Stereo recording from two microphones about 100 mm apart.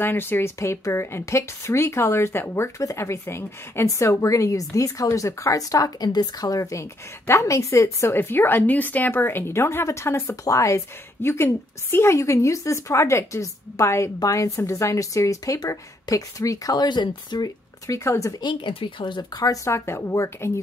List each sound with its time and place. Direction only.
0.0 s a woman's voice: 20° left (ahead or behind); by 17.5 s 45° left (ahead or behind)
17.8 s a woman's voice: 30° left (ahead or behind)
18.4 s speech: 55° left (ahead or behind)
19.4 s a woman's voice: 35° left (ahead or behind)